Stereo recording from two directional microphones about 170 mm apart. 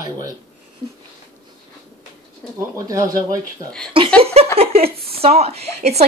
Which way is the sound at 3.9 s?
30° right (ahead or behind).